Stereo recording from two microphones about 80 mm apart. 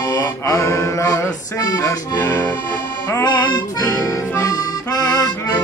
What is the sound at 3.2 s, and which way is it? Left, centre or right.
Accordion, left.